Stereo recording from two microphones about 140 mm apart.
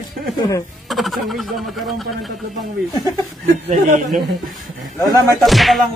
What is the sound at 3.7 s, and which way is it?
Speech, 60° right (ahead or behind).